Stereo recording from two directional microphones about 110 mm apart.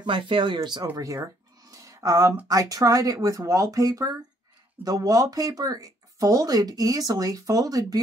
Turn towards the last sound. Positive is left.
turn(degrees=-35)  # may be behind; listen again after turning